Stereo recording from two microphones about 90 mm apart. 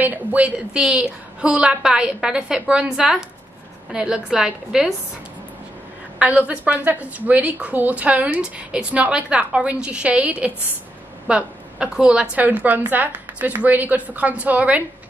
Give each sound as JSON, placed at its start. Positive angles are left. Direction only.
{"t": 0.0, "sound": "a woman's voice", "side_deg": -20}
{"t": 6.1, "sound": "a woman's voice", "side_deg": -15}